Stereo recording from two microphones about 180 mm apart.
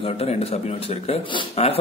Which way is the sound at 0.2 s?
35° left (ahead or behind).